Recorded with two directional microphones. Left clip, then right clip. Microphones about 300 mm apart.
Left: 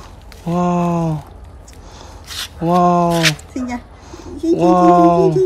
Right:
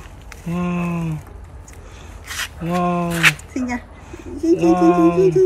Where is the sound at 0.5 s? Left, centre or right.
Centre.